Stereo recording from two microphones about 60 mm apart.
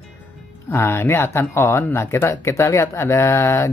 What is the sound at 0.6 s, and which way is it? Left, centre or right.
Speech, left.